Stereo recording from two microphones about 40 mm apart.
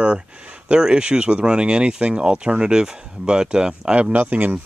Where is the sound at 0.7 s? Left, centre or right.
Right.